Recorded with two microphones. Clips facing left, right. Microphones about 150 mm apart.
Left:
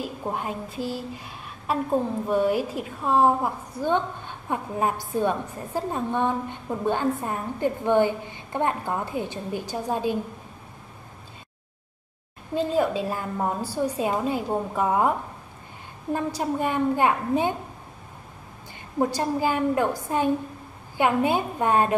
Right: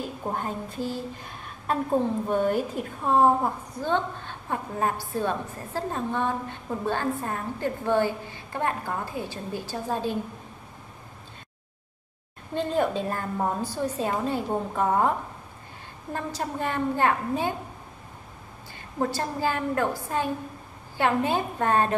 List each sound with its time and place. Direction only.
0.2 s a woman's voice: 5° left (ahead or behind)
12.5 s a woman's voice: 5° left (ahead or behind)
18.9 s a woman's voice: 15° left (ahead or behind)